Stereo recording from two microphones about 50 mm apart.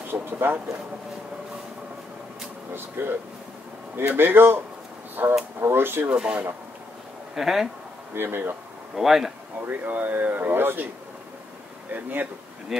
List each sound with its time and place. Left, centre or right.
0.0 s speech: right
2.7 s speech: right
6.0 s speech: centre
7.3 s speech: centre
8.1 s speech: right
8.9 s speech: centre
9.7 s speech: right
11.9 s speech: right